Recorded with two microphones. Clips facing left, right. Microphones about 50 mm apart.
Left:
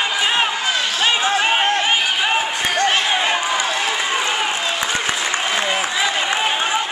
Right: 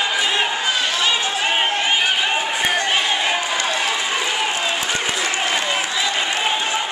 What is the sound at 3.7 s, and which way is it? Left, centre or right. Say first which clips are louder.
Run: left 1 dB; centre.